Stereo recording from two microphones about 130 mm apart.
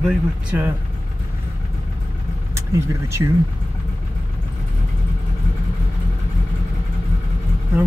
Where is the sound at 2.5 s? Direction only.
25° right (ahead or behind).